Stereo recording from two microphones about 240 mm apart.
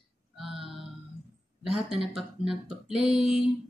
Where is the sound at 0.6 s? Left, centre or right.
Right.